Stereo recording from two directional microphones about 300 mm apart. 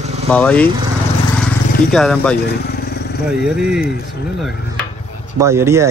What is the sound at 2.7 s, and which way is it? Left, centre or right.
Vehicle, left.